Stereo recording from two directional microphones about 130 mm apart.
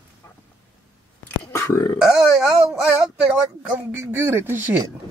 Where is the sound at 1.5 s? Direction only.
20° left (ahead or behind).